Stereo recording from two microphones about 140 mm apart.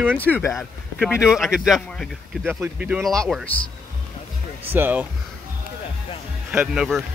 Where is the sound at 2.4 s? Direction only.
15° right (ahead or behind).